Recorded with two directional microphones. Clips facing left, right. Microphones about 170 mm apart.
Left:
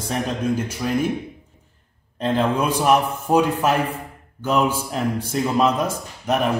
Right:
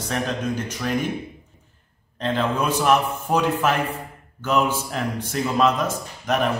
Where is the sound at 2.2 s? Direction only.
10° left (ahead or behind).